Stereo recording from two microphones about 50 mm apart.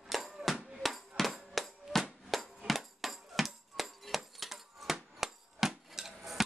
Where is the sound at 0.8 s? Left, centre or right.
Centre.